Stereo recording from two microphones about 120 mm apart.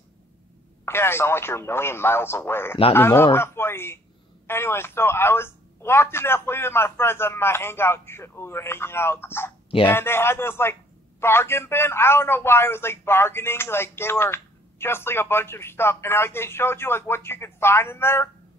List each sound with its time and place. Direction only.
0.8 s a man's voice: 20° left (ahead or behind)